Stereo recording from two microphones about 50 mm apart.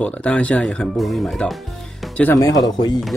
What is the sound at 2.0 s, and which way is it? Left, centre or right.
Music, centre.